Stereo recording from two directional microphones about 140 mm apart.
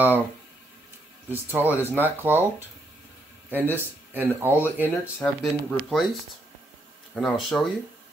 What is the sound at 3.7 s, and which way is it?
Speech, 15° right (ahead or behind).